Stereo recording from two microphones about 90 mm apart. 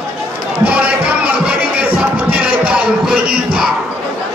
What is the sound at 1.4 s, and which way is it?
Music, 20° right (ahead or behind).